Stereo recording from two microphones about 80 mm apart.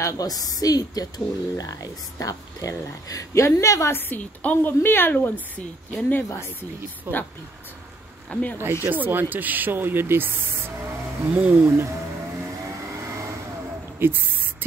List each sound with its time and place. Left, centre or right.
0.0 s speech: left
3.9 s a woman's voice: left
7.1 s speech: right
8.3 s speech: centre
8.8 s speech: right
14.0 s speech: right